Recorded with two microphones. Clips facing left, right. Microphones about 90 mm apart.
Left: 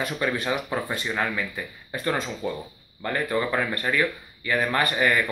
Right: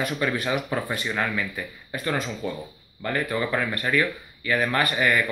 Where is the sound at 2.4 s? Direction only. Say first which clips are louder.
Left 1 dB; 30° left (ahead or behind).